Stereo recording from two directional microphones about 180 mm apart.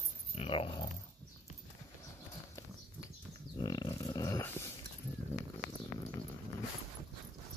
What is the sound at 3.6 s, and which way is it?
Dog, 20° left (ahead or behind).